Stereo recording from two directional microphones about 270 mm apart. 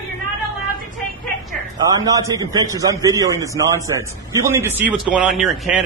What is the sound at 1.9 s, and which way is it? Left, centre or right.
A man's voice, centre.